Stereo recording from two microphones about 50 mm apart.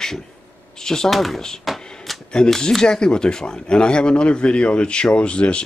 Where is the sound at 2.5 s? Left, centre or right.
Centre.